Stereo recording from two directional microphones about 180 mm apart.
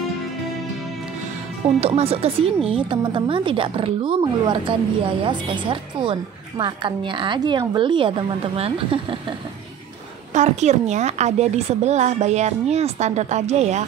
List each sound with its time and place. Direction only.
1.8 s a woman's voice: 35° right (ahead or behind)
10.3 s a woman's voice: 40° right (ahead or behind)